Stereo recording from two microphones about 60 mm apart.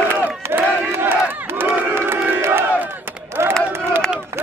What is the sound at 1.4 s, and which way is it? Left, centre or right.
Crowd, right.